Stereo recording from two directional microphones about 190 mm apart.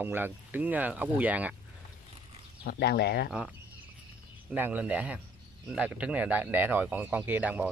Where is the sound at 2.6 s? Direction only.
55° left (ahead or behind).